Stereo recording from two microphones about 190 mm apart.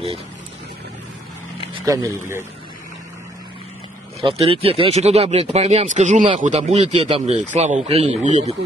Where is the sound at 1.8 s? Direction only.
20° right (ahead or behind).